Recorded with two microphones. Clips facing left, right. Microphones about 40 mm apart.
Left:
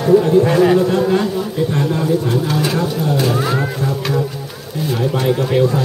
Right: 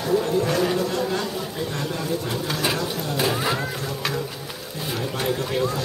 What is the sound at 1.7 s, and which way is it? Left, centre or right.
Speech, left.